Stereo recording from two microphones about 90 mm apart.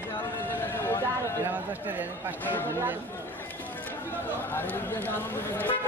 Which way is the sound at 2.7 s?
25° right (ahead or behind).